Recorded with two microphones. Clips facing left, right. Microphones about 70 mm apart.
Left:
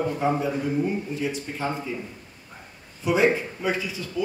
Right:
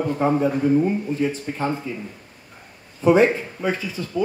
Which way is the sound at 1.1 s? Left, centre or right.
Right.